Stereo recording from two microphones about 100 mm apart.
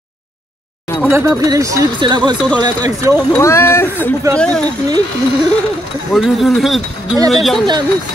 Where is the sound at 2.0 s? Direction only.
50° right (ahead or behind).